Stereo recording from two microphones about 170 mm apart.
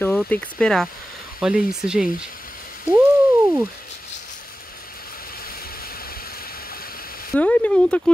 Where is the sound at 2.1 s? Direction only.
55° left (ahead or behind).